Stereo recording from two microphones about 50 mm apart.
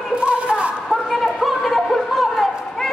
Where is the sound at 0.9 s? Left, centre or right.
Centre.